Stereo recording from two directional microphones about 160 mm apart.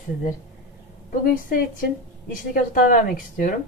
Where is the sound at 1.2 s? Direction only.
60° left (ahead or behind).